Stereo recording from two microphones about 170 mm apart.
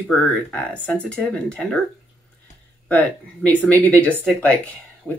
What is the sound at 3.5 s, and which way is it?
Speech, 10° left (ahead or behind).